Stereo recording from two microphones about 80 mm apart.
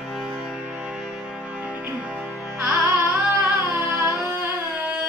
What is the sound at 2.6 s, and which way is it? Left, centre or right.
Music, right.